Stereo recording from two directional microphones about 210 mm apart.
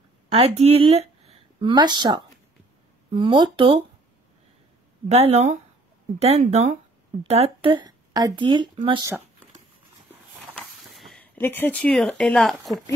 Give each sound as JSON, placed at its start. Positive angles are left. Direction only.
{"t": 0.3, "sound": "speech", "side_deg": -30}
{"t": 5.0, "sound": "speech", "side_deg": -30}
{"t": 10.5, "sound": "speech", "side_deg": 0}